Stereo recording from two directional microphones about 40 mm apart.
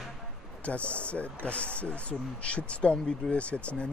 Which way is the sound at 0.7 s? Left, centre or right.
Left.